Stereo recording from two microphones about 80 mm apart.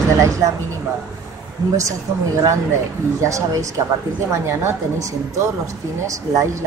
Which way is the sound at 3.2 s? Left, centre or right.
Right.